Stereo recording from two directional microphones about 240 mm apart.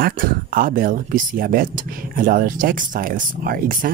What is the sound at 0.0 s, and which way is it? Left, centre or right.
Speech, right.